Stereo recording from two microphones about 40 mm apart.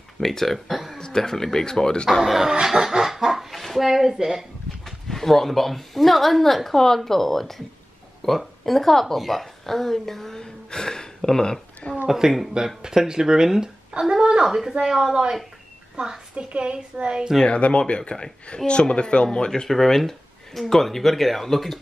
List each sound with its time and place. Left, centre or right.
0.2 s speech: centre
0.9 s a woman's voice: centre
2.2 s speech: centre
2.5 s a sound: centre
3.8 s speech: centre
4.8 s a woman's voice: centre
8.6 s a woman's voice: centre
10.4 s gasp: centre
12.1 s a woman's voice: centre
17.5 s a woman's voice: left
19.7 s speech: centre